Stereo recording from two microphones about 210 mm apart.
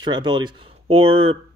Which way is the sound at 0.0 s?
20° right (ahead or behind).